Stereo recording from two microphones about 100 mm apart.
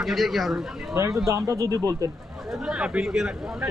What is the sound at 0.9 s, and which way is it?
Speech, 30° right (ahead or behind).